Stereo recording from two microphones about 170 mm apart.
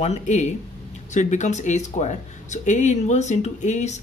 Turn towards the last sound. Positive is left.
turn(degrees=45)  # may be behind; listen again after turning